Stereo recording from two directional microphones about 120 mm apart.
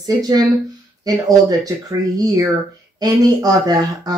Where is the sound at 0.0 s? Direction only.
35° right (ahead or behind).